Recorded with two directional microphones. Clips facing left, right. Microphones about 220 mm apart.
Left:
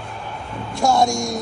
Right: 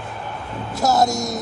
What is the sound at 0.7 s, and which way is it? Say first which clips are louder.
Speech: left 1 dB; 5° right (ahead or behind).